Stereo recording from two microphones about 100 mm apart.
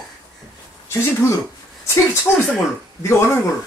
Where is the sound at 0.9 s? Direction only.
30° left (ahead or behind).